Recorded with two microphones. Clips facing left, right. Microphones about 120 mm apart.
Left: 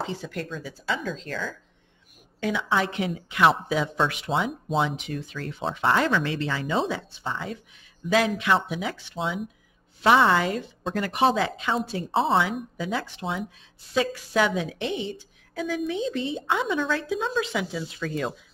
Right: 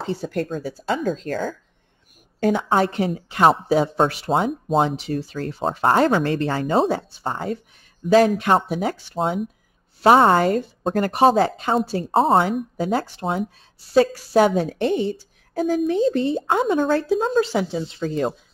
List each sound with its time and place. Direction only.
0.0 s speech: 40° right (ahead or behind)